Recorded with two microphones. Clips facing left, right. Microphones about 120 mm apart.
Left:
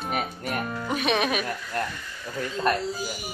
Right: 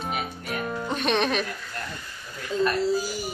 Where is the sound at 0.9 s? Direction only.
5° left (ahead or behind).